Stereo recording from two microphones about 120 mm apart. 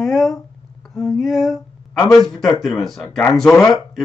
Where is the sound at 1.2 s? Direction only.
Centre (ahead or behind).